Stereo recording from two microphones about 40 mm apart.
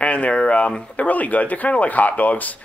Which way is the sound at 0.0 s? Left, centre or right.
Left.